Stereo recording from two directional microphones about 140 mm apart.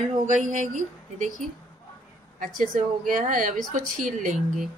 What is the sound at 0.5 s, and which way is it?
Speech, 60° right (ahead or behind).